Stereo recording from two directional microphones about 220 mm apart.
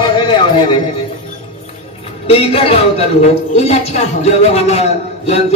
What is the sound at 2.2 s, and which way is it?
A man's voice, 25° left (ahead or behind).